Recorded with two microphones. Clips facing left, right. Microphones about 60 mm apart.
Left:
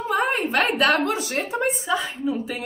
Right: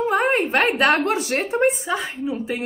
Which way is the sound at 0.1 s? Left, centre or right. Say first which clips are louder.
Left 1 dB; right.